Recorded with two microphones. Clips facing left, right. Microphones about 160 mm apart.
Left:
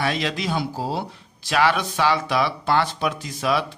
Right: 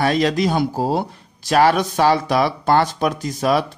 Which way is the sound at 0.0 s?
45° right (ahead or behind).